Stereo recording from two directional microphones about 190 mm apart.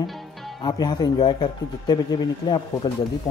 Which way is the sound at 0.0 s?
Centre (ahead or behind).